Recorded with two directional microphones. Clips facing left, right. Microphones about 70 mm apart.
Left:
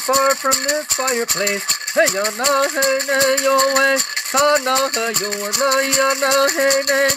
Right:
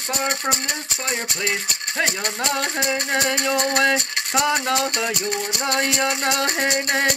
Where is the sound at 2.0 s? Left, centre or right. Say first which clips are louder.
Left 7 dB; centre.